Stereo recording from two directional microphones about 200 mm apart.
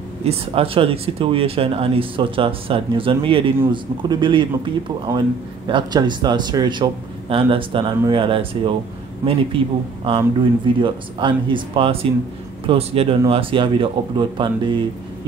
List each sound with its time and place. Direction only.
0.2 s speech: 30° right (ahead or behind)